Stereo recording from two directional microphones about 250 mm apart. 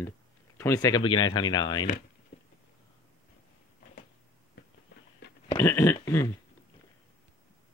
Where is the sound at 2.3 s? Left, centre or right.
Left.